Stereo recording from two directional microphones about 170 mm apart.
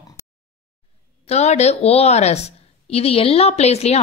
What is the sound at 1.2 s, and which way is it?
Speech, 40° left (ahead or behind).